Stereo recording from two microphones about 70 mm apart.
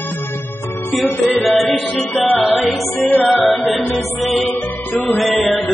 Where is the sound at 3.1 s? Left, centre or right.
Left.